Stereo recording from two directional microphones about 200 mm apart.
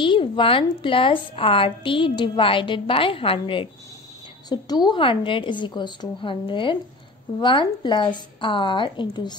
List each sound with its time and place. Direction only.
0.0 s a woman's voice: 25° left (ahead or behind)